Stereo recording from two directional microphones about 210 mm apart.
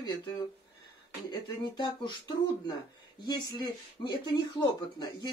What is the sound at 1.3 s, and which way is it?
Speech, 20° left (ahead or behind).